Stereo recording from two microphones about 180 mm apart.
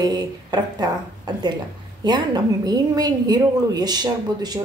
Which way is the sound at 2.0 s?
25° right (ahead or behind).